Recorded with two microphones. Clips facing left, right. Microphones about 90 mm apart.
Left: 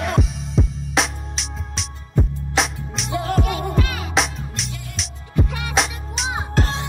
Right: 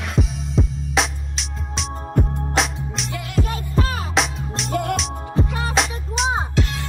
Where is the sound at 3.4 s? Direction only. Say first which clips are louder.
Right 2 dB; 40° left (ahead or behind).